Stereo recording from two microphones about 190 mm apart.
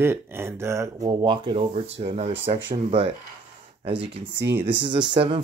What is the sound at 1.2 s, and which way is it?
Speech, 25° right (ahead or behind).